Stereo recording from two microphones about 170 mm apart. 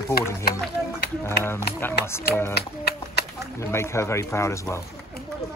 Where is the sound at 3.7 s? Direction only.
15° left (ahead or behind).